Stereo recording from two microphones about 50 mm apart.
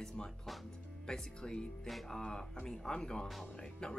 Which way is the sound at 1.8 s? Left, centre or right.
Centre.